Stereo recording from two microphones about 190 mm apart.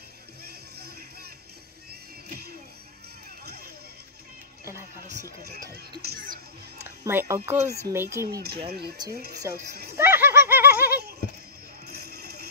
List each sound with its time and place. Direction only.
6.0 s music: 45° right (ahead or behind)
7.1 s speech: 10° right (ahead or behind)
8.4 s speech: 55° right (ahead or behind)
9.5 s speech: 15° right (ahead or behind)
9.9 s laughter: 10° right (ahead or behind)
11.9 s music: 55° right (ahead or behind)